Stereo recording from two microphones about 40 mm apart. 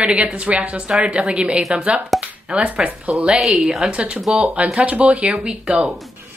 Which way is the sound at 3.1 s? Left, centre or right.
Right.